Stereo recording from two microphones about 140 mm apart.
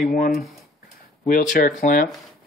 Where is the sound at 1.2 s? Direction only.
80° left.